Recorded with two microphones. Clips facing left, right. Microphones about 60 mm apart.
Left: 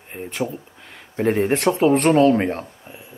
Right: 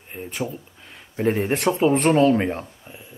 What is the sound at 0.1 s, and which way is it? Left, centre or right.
Speech, left.